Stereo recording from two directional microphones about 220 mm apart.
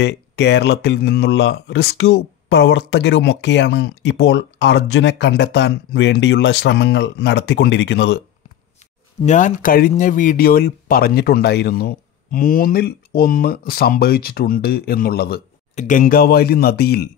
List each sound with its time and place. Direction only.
0.0 s speech: 50° left (ahead or behind)
9.2 s speech: 35° left (ahead or behind)
15.7 s speech: 35° left (ahead or behind)